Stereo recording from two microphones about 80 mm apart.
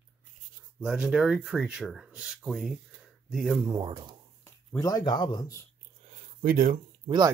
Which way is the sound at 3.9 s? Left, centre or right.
Right.